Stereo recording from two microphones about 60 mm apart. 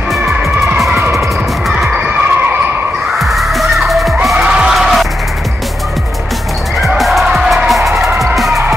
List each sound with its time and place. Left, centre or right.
3.2 s music: centre
4.4 s music: centre
4.7 s music: centre
7.0 s music: centre
8.5 s music: right